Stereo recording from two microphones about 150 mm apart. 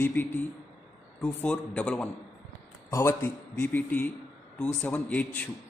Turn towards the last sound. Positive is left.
turn(degrees=10)  # may be behind; listen again after turning